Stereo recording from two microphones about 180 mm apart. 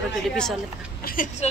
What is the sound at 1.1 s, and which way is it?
Speech, 50° left (ahead or behind).